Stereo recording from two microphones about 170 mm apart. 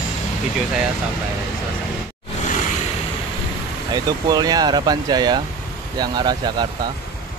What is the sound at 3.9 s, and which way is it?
Speech, 25° right (ahead or behind).